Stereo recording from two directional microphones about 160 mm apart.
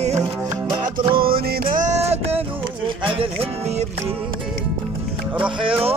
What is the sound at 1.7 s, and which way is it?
Music, 45° right (ahead or behind).